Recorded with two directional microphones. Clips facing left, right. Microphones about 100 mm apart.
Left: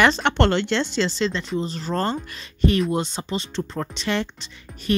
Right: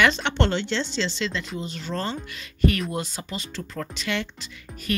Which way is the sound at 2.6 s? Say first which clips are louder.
Left 4 dB; 25° left (ahead or behind).